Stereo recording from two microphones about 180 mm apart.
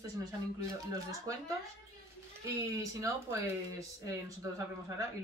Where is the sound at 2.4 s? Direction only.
15° right (ahead or behind).